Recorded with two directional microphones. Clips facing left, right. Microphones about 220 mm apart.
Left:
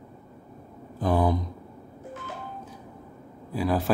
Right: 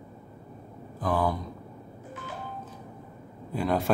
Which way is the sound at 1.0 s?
20° left (ahead or behind).